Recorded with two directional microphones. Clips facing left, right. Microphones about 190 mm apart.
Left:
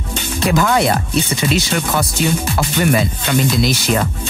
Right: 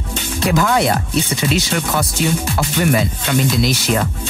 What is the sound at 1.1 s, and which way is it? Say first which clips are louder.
Speech: left 1 dB; 5° right (ahead or behind).